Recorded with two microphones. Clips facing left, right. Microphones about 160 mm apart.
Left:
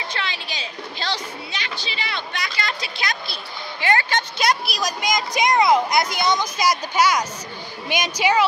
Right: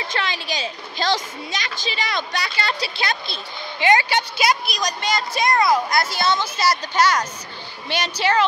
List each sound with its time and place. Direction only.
0.1 s a woman's voice: 45° right (ahead or behind); by 3.3 s 30° right (ahead or behind)
3.8 s a woman's voice: 15° right (ahead or behind); by 8.5 s 10° left (ahead or behind)